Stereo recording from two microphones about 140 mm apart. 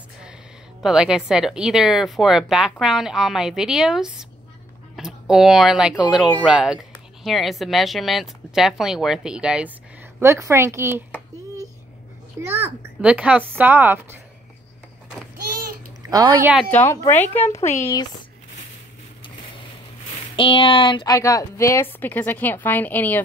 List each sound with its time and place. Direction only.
0.8 s speech: 5° right (ahead or behind)
10.2 s a woman's voice: 20° right (ahead or behind)
12.4 s a child's voice: 15° right (ahead or behind)
16.0 s a woman's voice: 25° right (ahead or behind)
16.7 s a woman's voice: 20° left (ahead or behind)
17.6 s speech: 55° left (ahead or behind)
20.3 s a woman's voice: 40° left (ahead or behind); by 23.2 s 10° left (ahead or behind)